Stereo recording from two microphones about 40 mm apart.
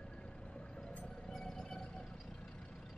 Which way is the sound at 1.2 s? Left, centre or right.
Centre.